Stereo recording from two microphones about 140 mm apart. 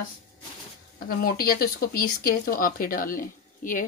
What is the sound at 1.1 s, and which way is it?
Speech, 90° left.